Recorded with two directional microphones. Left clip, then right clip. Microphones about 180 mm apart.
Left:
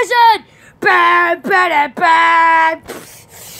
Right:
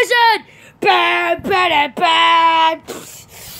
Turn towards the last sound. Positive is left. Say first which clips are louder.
# even
turn(degrees=0)  # may be behind; listen again after turning